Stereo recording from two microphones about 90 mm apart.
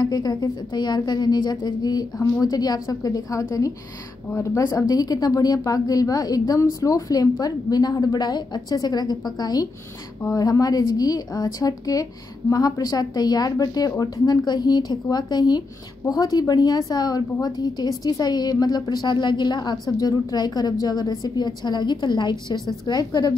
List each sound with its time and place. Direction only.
0.0 s a woman's voice: 50° left (ahead or behind)